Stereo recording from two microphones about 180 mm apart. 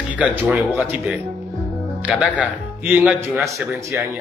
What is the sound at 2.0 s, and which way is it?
Speech, 10° right (ahead or behind).